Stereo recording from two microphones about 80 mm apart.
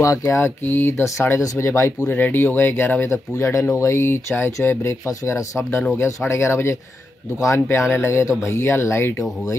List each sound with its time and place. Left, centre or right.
0.0 s speech: left
0.4 s speech: left
1.4 s speech: left
1.7 s speech: left